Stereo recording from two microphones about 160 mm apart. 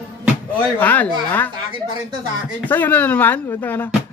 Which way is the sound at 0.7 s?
10° left (ahead or behind).